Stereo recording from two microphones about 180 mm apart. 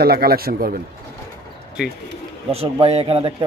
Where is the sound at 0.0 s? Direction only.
60° right (ahead or behind).